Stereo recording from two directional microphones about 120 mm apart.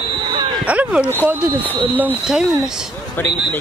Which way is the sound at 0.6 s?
10° right (ahead or behind).